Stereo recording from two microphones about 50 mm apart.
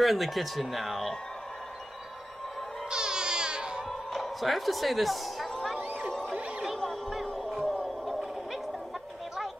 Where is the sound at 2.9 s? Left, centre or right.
Centre.